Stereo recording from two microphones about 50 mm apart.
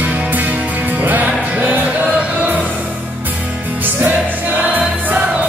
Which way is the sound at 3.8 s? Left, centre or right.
Right.